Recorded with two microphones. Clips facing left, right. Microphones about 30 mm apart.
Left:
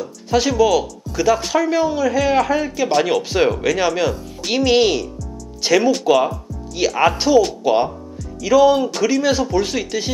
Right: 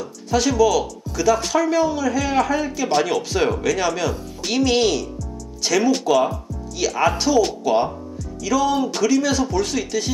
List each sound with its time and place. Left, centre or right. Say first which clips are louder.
0.3 s speech: left 2 dB; centre